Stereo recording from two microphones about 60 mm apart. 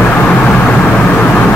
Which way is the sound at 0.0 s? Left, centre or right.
Left.